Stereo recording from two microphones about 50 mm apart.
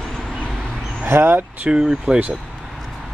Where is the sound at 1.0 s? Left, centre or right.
Right.